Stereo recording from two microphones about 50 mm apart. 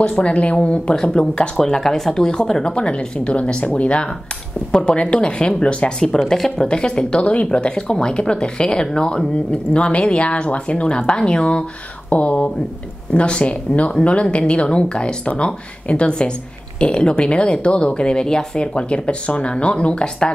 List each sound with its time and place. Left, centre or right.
0.0 s speech: left
1.6 s speech: centre
6.2 s speech: centre